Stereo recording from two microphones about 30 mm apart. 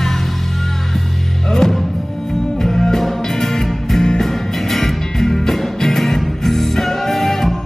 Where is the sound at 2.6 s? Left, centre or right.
Centre.